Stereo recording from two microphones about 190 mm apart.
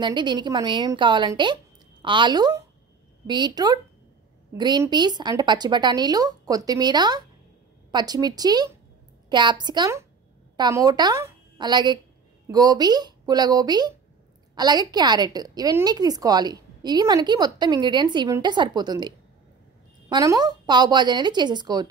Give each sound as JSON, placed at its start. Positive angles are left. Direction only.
{"t": 0.0, "sound": "a woman's voice", "side_deg": -25}